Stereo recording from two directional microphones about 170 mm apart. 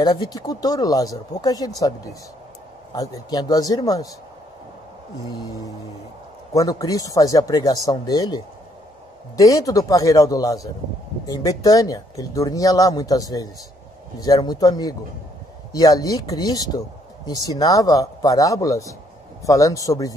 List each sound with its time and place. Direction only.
0.0 s speech: 25° left (ahead or behind)
5.3 s speech: 20° left (ahead or behind)
9.4 s speech: 20° left (ahead or behind)